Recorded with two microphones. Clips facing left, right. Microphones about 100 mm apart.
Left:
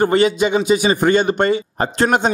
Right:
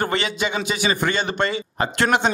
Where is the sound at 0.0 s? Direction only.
40° left (ahead or behind).